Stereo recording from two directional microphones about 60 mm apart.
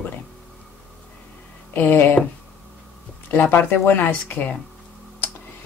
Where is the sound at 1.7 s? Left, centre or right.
Left.